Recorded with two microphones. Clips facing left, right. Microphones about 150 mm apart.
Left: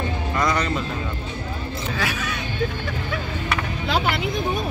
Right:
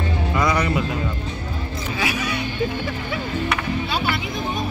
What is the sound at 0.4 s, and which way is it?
Speech, 10° right (ahead or behind).